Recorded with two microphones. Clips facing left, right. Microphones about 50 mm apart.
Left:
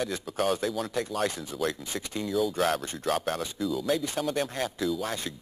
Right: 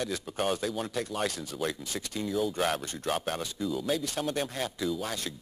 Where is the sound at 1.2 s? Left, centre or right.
Centre.